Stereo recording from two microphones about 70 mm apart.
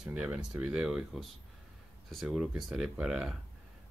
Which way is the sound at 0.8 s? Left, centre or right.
Centre.